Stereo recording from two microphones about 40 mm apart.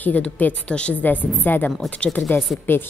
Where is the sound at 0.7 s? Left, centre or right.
Left.